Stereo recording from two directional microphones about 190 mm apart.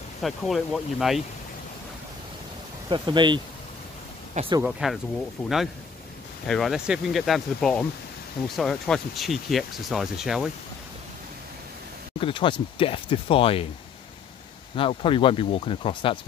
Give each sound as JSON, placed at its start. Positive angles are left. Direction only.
{"t": 0.2, "sound": "speech", "side_deg": 0}
{"t": 2.9, "sound": "speech", "side_deg": -25}
{"t": 4.6, "sound": "speech", "side_deg": -5}
{"t": 12.2, "sound": "speech", "side_deg": 25}
{"t": 14.8, "sound": "speech", "side_deg": 25}